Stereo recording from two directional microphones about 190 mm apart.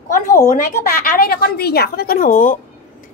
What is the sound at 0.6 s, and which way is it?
A woman's voice, 50° left (ahead or behind).